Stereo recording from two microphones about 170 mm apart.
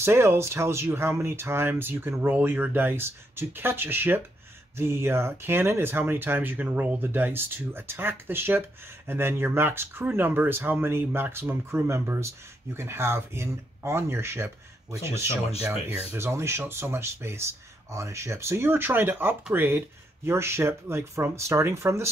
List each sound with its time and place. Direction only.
0.0 s speech: 15° right (ahead or behind)